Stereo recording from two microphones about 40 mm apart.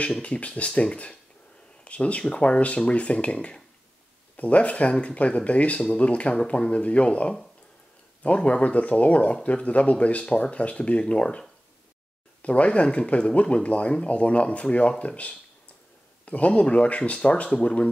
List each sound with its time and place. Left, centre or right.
0.2 s speech: left
17.2 s speech: left